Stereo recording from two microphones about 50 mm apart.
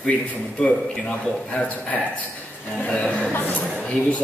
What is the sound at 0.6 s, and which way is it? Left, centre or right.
A man's voice, centre.